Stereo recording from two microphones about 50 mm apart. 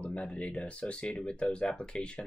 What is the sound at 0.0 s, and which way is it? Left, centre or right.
Speech, left.